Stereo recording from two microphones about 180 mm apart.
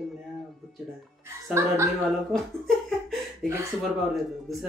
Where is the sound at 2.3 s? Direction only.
Centre (ahead or behind).